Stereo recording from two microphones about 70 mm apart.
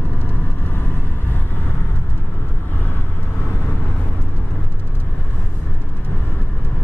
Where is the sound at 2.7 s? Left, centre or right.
Left.